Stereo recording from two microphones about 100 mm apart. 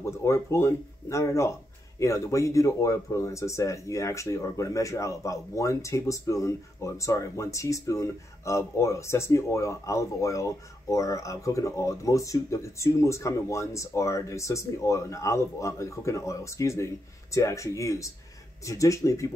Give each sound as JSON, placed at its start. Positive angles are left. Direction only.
{"t": 0.0, "sound": "speech", "side_deg": 25}